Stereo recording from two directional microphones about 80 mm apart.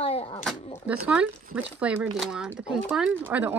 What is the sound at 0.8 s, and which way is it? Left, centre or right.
Speech, centre.